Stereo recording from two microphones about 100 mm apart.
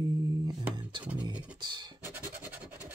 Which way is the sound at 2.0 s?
20° right (ahead or behind).